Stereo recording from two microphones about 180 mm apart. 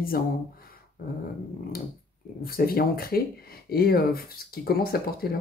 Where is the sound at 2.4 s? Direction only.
55° left (ahead or behind).